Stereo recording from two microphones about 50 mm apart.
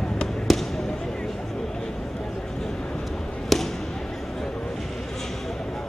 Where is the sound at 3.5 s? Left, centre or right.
Centre.